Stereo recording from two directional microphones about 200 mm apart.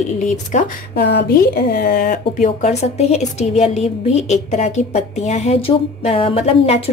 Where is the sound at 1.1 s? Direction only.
50° left (ahead or behind).